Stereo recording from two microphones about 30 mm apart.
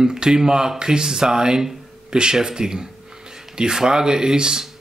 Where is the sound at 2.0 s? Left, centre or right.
Right.